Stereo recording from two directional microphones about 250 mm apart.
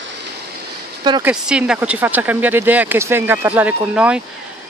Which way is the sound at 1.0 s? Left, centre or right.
Centre.